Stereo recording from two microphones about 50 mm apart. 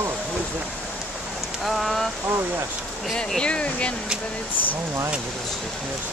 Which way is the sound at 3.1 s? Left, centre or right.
Centre.